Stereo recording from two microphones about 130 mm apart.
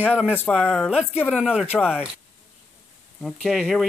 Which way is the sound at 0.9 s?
10° right (ahead or behind).